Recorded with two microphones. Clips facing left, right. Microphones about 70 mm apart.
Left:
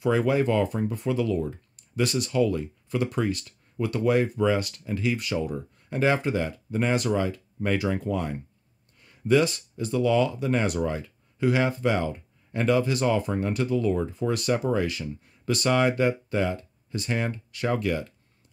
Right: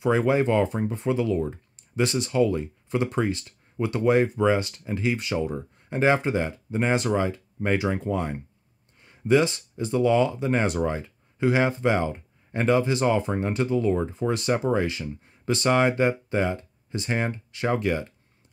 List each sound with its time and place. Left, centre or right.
0.0 s speech: right